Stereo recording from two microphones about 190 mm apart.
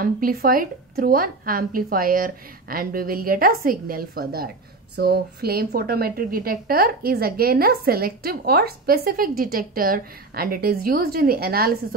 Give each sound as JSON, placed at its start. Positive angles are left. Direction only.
{"t": 0.0, "sound": "a woman's voice", "side_deg": -50}